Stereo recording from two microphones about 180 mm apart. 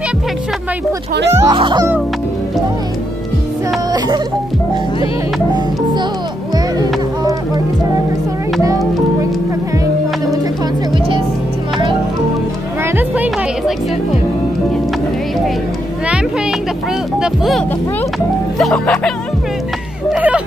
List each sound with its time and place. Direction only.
1.3 s speech: 20° right (ahead or behind)
8.6 s music: 20° right (ahead or behind)
12.8 s music: 10° right (ahead or behind)
17.2 s music: centre (ahead or behind)